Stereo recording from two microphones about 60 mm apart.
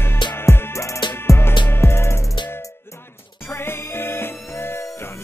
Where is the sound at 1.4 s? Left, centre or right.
Left.